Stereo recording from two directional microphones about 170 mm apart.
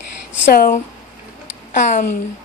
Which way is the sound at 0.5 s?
55° left (ahead or behind).